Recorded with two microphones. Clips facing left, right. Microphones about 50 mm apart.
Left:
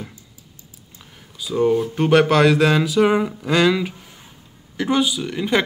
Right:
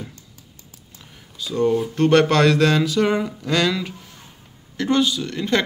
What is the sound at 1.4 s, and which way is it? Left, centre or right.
A man's voice, centre.